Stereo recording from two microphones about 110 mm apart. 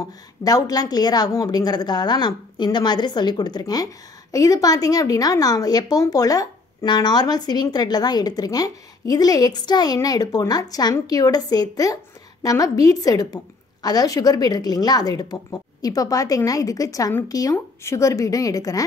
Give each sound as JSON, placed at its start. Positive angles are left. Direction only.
{"t": 0.0, "sound": "a woman's voice", "side_deg": 35}